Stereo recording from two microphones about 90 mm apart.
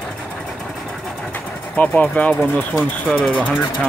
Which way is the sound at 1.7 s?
15° left (ahead or behind).